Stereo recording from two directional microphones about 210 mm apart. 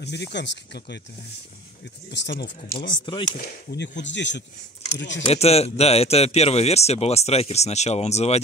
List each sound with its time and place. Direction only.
0.0 s speech: 55° left (ahead or behind)
2.0 s speech: 55° left (ahead or behind)
2.7 s speech: 20° left (ahead or behind)
3.7 s speech: 55° left (ahead or behind)
5.2 s speech: 30° left (ahead or behind)